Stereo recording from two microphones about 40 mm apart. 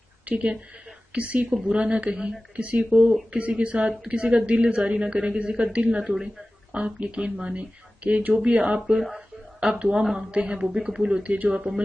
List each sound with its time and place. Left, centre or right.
0.2 s a woman's voice: right
2.9 s a man's voice: centre
3.3 s a man's voice: right
11.2 s speech: right
11.5 s a man's voice: right